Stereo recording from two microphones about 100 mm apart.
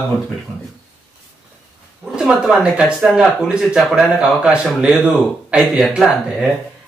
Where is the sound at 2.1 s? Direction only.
5° right (ahead or behind).